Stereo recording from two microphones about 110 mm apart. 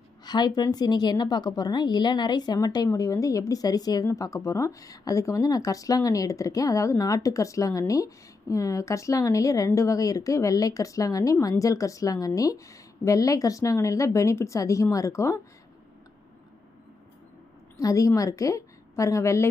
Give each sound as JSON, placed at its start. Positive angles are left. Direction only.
{"t": 0.2, "sound": "a woman's voice", "side_deg": 40}
{"t": 17.7, "sound": "a woman's voice", "side_deg": 30}